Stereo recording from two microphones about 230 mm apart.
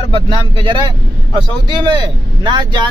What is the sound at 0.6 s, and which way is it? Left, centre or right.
Speech, right.